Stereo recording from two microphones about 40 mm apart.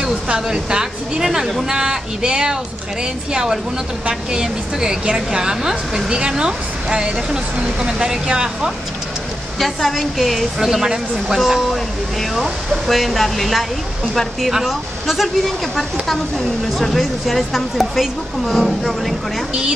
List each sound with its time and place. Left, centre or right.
0.0 s a woman's voice: centre
4.1 s a woman's voice: centre
9.6 s speech: centre